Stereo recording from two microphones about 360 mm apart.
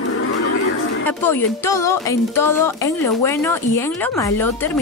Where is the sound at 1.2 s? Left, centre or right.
Centre.